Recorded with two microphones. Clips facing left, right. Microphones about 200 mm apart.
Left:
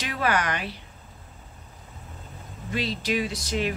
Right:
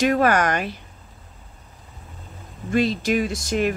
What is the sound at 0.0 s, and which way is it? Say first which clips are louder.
Speech: right 8 dB; 45° right (ahead or behind).